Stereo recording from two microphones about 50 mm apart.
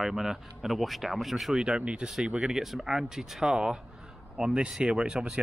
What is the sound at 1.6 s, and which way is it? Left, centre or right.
Speech, centre.